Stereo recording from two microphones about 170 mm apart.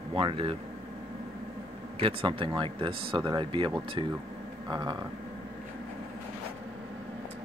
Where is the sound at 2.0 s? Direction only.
30° right (ahead or behind).